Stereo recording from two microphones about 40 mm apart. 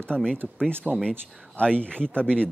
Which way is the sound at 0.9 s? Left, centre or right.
Right.